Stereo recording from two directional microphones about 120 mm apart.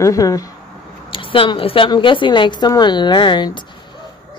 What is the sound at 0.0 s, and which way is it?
Speech, 30° left (ahead or behind).